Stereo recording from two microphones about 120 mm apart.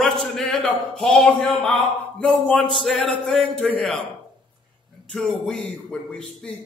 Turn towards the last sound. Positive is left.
turn(degrees=5)  # may be behind; listen again after turning